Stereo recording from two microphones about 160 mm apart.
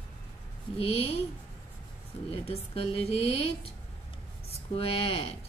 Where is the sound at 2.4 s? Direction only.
35° left (ahead or behind).